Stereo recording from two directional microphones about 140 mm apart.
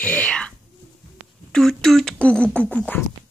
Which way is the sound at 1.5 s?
5° left (ahead or behind).